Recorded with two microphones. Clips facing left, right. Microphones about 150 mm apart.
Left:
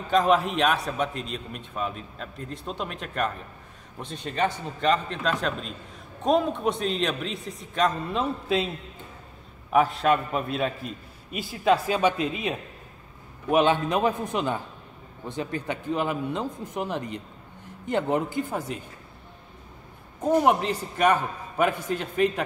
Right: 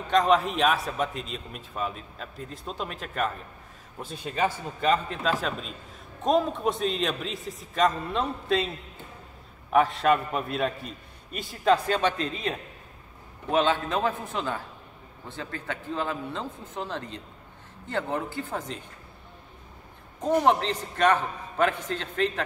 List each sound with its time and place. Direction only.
0.0 s a man's voice: centre (ahead or behind)
9.7 s a man's voice: centre (ahead or behind)
20.2 s a man's voice: 10° left (ahead or behind)